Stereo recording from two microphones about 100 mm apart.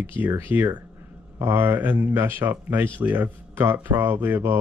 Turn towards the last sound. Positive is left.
turn(degrees=-20)  # may be behind; listen again after turning